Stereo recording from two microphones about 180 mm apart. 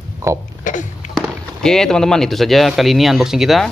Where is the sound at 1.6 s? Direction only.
5° left (ahead or behind).